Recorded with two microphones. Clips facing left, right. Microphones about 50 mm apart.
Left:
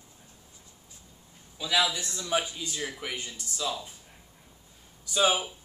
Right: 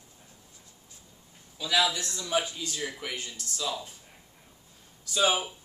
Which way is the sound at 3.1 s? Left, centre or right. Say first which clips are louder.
Even; centre.